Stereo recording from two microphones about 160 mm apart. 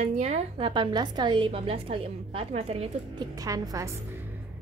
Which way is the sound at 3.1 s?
20° right (ahead or behind).